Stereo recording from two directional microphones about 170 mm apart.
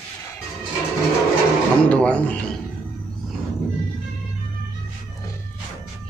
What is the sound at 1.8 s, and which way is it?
Speech, 10° left (ahead or behind).